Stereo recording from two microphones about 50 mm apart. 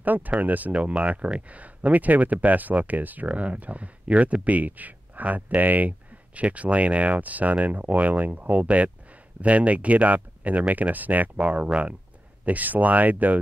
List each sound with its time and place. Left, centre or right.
0.0 s speech: right